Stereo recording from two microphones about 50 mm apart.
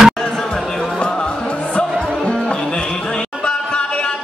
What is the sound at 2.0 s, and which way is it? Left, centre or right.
Music, centre.